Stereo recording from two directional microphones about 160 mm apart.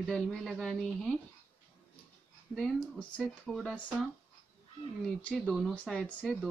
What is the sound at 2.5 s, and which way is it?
Speech, centre (ahead or behind).